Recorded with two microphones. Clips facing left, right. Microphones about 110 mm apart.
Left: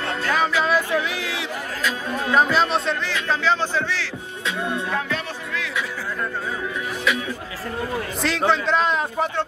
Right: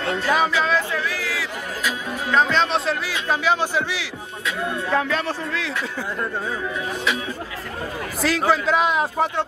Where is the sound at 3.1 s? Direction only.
15° right (ahead or behind).